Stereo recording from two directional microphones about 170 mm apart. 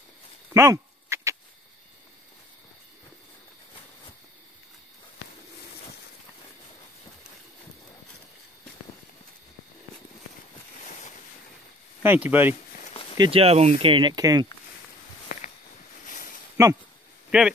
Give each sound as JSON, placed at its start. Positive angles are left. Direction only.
{"t": 0.5, "sound": "a sound", "side_deg": -15}
{"t": 12.0, "sound": "speech", "side_deg": -10}
{"t": 13.2, "sound": "speech", "side_deg": -35}
{"t": 15.3, "sound": "a sound", "side_deg": 55}
{"t": 16.6, "sound": "speech", "side_deg": -20}
{"t": 17.3, "sound": "speech", "side_deg": -5}